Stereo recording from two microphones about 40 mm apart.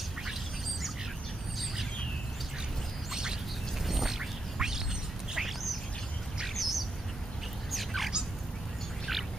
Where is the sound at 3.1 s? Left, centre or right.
Centre.